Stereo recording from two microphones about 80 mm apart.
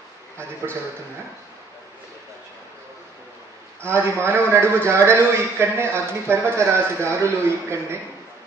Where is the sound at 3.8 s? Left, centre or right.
Right.